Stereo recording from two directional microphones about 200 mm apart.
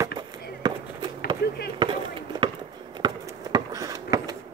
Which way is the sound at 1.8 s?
25° right (ahead or behind).